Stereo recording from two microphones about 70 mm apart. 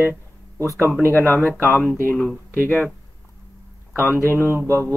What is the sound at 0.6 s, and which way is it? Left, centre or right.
Speech, right.